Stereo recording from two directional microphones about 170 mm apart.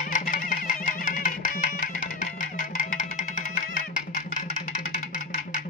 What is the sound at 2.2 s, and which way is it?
Music, 55° left (ahead or behind).